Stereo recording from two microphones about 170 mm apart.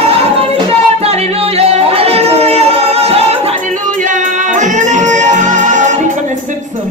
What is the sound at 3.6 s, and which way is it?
Music, 45° right (ahead or behind).